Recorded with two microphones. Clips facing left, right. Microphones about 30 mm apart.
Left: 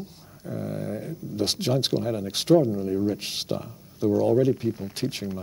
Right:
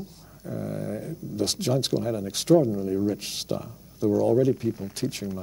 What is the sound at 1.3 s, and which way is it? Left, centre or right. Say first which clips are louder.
Speech: left 1 dB; left.